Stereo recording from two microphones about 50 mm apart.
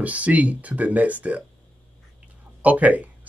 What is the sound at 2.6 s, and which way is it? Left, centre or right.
Speech, right.